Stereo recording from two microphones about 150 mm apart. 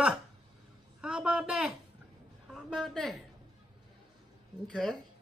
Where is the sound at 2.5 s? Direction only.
5° left (ahead or behind).